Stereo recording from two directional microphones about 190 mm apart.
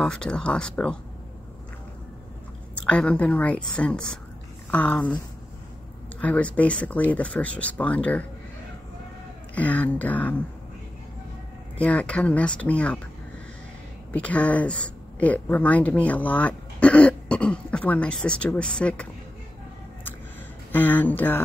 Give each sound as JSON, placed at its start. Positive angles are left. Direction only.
{"t": 0.0, "sound": "speech", "side_deg": 5}
{"t": 2.8, "sound": "speech", "side_deg": 5}
{"t": 6.2, "sound": "speech", "side_deg": 10}
{"t": 9.6, "sound": "speech", "side_deg": 10}
{"t": 11.8, "sound": "speech", "side_deg": 5}
{"t": 14.1, "sound": "speech", "side_deg": 5}
{"t": 20.7, "sound": "speech", "side_deg": 10}